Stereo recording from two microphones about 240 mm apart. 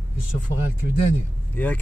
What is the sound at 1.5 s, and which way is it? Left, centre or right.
Speech, centre.